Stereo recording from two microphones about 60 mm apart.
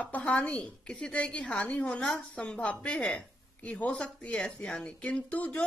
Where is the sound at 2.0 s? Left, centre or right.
Centre.